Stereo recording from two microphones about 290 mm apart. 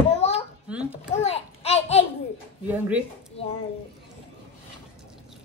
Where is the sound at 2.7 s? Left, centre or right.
Centre.